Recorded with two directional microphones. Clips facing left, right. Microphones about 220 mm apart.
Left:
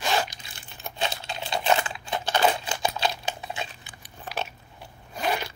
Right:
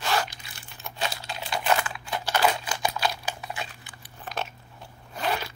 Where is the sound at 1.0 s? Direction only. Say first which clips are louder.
Left 2 dB; 25° left (ahead or behind).